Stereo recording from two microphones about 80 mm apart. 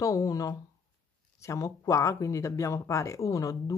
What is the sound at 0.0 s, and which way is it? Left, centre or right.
Speech, left.